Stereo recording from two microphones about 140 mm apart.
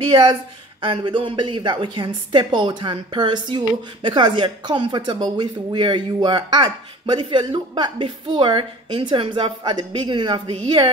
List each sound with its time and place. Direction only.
0.0 s speech: 35° right (ahead or behind)